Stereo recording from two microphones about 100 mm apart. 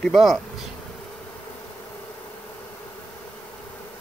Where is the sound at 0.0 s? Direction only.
Centre (ahead or behind).